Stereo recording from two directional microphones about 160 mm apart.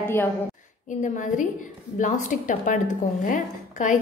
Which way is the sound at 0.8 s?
50° left (ahead or behind).